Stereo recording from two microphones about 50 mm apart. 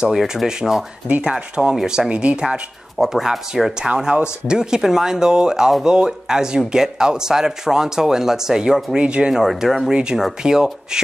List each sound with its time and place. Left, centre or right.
0.1 s speech: centre
9.3 s speech: centre